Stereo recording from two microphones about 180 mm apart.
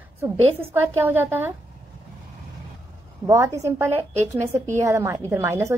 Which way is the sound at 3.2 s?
15° right (ahead or behind).